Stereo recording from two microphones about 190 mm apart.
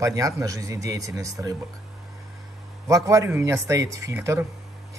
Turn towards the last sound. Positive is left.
turn(degrees=-15)  # may be behind; listen again after turning